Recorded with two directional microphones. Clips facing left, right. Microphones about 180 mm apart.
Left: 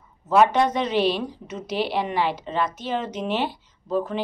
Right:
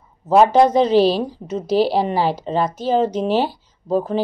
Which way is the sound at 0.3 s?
35° right (ahead or behind).